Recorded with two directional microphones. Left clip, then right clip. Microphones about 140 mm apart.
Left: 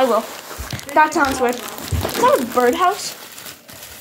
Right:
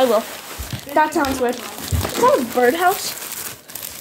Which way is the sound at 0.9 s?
Centre (ahead or behind).